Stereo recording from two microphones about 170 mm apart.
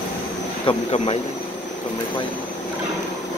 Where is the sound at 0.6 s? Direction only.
35° left (ahead or behind).